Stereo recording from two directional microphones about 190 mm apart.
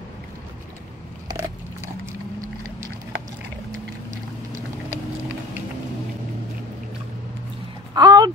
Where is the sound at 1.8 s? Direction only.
15° right (ahead or behind).